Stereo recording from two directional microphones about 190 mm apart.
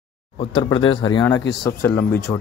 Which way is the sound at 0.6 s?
25° left (ahead or behind).